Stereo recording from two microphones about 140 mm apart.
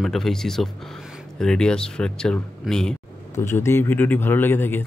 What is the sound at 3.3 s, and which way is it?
Speech, 20° left (ahead or behind).